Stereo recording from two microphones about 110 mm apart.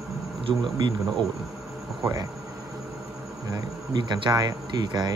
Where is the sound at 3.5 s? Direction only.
40° right (ahead or behind).